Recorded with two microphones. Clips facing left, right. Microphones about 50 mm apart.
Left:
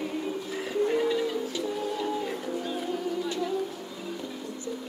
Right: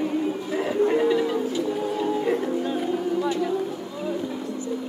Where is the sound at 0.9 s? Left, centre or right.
Right.